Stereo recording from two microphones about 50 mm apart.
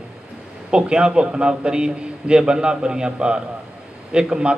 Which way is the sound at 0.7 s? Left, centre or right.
Centre.